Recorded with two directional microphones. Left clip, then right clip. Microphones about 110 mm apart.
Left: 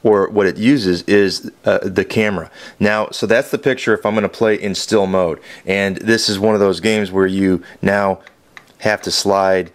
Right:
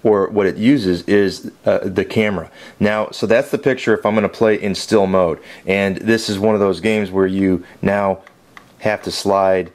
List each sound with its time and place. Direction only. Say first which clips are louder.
0.0 s speech: left 1 dB; 35° left (ahead or behind)